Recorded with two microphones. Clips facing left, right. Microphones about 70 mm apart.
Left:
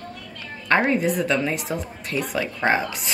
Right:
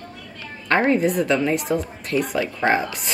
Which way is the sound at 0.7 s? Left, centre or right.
Centre.